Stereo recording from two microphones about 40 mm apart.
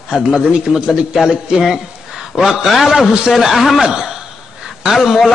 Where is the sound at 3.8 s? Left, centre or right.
Centre.